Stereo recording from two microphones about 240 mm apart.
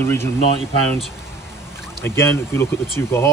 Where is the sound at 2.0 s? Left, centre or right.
Centre.